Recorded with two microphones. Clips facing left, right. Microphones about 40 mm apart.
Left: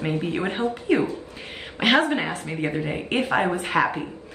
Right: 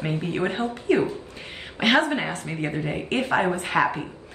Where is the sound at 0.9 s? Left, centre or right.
Centre.